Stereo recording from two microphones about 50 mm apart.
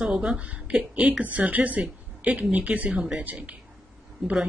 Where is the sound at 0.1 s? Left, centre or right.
Centre.